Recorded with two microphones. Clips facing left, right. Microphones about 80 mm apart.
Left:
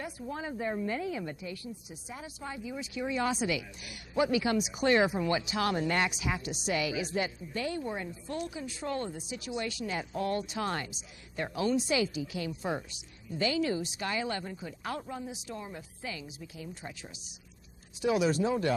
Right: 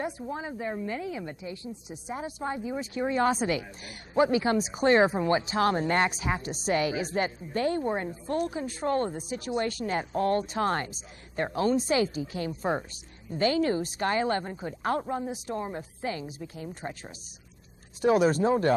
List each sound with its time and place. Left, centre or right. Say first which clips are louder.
0.0 s speech: right 4 dB; right
2.1 s speech: right 8 dB; right